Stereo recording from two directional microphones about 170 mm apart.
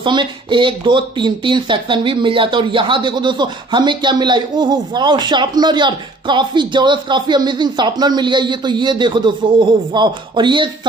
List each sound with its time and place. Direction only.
0.0 s speech: 30° right (ahead or behind)